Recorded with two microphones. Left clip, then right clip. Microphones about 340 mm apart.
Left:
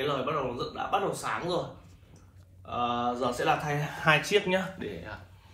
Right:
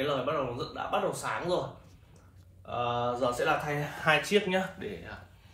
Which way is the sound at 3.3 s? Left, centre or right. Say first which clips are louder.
Left 1 dB; centre.